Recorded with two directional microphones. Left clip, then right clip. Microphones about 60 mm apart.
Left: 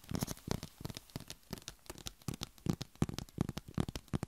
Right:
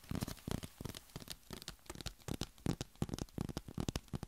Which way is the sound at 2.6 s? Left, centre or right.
Right.